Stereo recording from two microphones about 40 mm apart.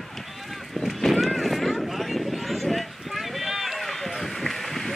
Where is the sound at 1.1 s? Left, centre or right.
Centre.